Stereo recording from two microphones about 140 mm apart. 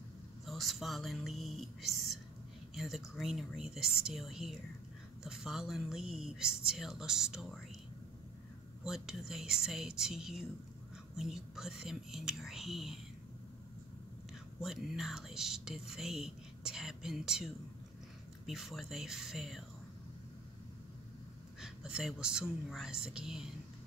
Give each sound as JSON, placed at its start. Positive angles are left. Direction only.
{"t": 0.5, "sound": "speech", "side_deg": 0}
{"t": 8.8, "sound": "speech", "side_deg": -5}
{"t": 14.6, "sound": "speech", "side_deg": 0}
{"t": 21.5, "sound": "speech", "side_deg": -5}